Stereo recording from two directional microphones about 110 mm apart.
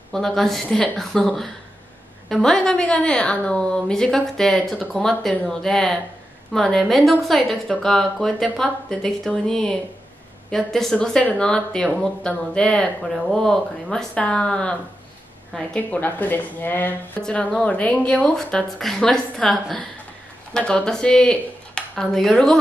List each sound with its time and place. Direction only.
0.1 s a woman's voice: 5° left (ahead or behind)